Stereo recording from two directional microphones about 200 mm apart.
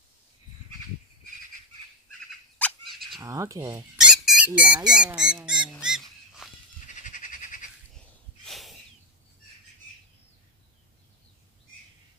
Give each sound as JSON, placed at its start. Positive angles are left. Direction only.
{"t": 2.6, "sound": "bird", "side_deg": 0}
{"t": 3.2, "sound": "speech", "side_deg": -15}
{"t": 4.0, "sound": "a sound", "side_deg": -5}
{"t": 4.5, "sound": "speech", "side_deg": -5}
{"t": 6.9, "sound": "a sound", "side_deg": 40}
{"t": 8.5, "sound": "snort", "side_deg": 0}